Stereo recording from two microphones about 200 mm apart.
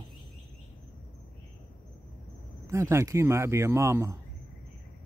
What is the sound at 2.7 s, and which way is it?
Speech, 15° right (ahead or behind).